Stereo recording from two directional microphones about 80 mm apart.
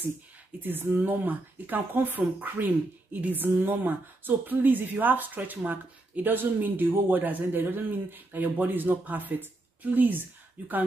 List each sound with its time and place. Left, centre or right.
0.6 s speech: right